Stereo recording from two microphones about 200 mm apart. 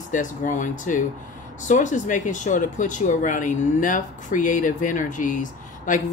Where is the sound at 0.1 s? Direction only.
40° left (ahead or behind).